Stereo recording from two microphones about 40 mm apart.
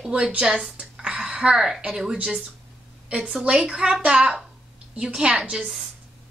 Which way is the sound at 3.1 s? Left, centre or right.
Right.